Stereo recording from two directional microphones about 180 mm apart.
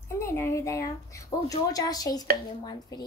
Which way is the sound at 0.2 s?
15° left (ahead or behind).